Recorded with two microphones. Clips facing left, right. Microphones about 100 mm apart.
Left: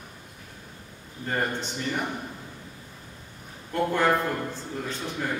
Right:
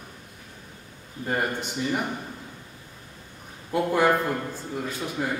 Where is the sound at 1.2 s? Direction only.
10° right (ahead or behind).